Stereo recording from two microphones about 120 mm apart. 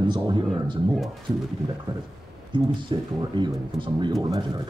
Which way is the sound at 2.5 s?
40° right (ahead or behind).